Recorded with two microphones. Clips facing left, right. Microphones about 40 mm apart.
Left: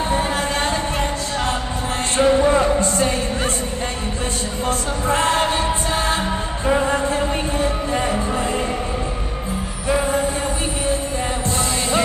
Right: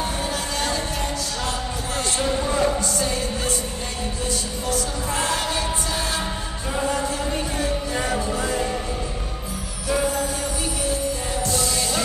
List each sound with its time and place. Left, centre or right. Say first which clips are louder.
0.1 s a sound: left 6 dB; left
2.1 s music: left 9 dB; left
4.6 s music: left 5 dB; left
9.8 s music: left 4 dB; left